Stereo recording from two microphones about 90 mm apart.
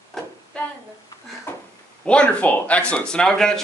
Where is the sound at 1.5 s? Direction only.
25° left (ahead or behind).